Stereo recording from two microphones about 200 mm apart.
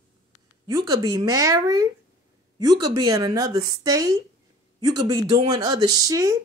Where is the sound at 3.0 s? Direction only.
20° right (ahead or behind).